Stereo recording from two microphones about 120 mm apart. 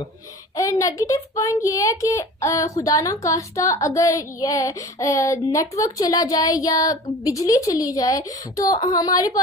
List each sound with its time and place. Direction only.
0.6 s a child's voice: 25° left (ahead or behind)